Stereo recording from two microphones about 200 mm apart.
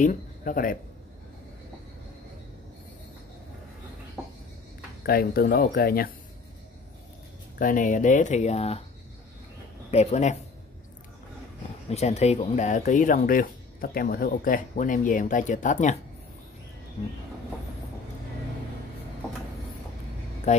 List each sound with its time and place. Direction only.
0.0 s speech: 40° left (ahead or behind)
5.0 s speech: 50° left (ahead or behind)
7.5 s speech: 40° left (ahead or behind)
9.8 s speech: 35° left (ahead or behind)
11.9 s speech: 30° left (ahead or behind)
20.5 s speech: 35° left (ahead or behind)